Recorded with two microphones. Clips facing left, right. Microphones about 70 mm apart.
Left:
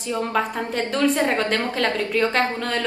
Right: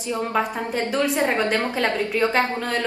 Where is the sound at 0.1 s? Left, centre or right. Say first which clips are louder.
Even; centre.